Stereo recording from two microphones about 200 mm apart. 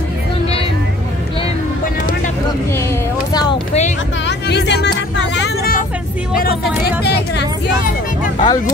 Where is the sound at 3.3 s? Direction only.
20° left (ahead or behind).